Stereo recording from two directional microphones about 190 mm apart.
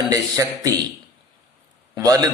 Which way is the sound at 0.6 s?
20° right (ahead or behind).